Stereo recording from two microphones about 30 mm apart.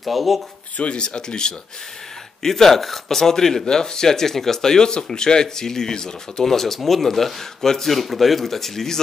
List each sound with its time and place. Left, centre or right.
0.0 s speech: centre
0.9 s speech: left
2.4 s speech: centre
6.4 s speech: centre